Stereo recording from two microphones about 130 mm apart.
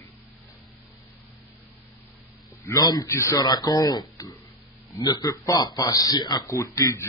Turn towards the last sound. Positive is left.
turn(degrees=25)  # may be behind; listen again after turning